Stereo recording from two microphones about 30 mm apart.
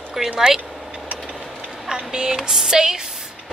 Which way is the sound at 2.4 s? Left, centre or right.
Centre.